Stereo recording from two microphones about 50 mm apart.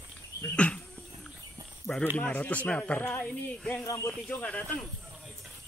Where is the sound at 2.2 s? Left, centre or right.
Left.